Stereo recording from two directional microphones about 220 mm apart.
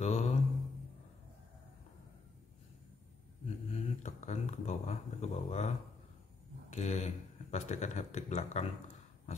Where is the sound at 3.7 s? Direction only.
30° left (ahead or behind).